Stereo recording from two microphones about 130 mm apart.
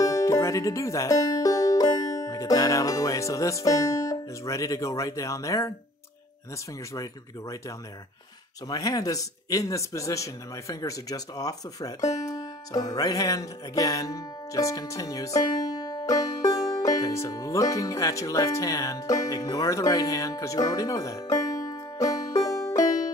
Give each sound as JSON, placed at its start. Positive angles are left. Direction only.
{"t": 0.0, "sound": "speech", "side_deg": 25}
{"t": 6.9, "sound": "speech", "side_deg": 25}
{"t": 12.2, "sound": "music", "side_deg": 30}